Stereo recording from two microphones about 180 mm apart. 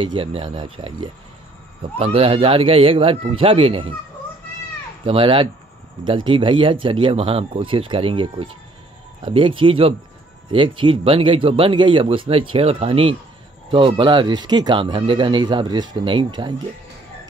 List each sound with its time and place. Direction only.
0.0 s speech: 30° right (ahead or behind)
5.0 s speech: 30° right (ahead or behind)